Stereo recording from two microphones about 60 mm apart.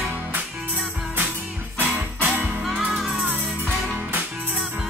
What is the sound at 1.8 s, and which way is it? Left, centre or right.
Music, right.